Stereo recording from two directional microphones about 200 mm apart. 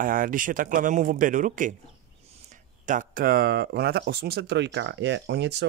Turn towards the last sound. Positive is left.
turn(degrees=-60)  # may be behind; listen again after turning